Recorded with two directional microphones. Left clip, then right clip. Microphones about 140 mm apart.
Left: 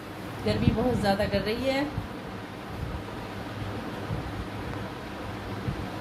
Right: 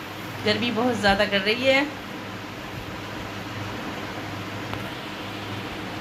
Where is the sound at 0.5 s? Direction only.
5° right (ahead or behind).